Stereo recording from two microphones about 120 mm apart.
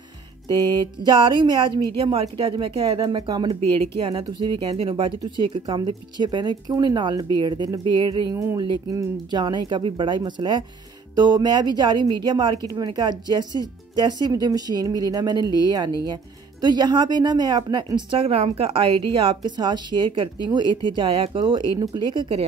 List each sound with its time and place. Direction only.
0.5 s speech: 40° right (ahead or behind)
2.0 s a woman's voice: 50° right (ahead or behind)
4.6 s a woman's voice: 50° right (ahead or behind)
8.3 s speech: 25° right (ahead or behind)
8.5 s speech: 35° right (ahead or behind)
18.2 s a woman's voice: 55° right (ahead or behind)